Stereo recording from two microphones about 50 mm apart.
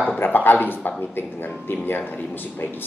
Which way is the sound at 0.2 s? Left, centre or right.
Left.